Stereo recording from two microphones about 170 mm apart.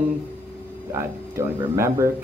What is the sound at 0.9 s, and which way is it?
Speech, 15° right (ahead or behind).